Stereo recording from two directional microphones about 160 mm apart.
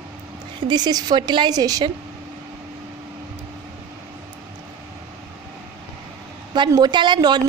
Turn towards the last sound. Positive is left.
turn(degrees=-30)  # may be behind; listen again after turning